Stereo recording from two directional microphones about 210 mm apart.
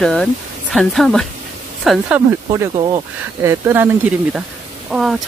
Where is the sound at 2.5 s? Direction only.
20° right (ahead or behind).